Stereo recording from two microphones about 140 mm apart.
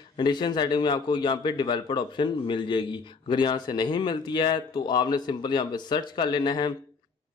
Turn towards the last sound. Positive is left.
turn(degrees=30)  # may be behind; listen again after turning